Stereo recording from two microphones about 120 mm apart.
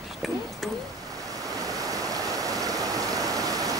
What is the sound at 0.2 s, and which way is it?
Speech, centre (ahead or behind).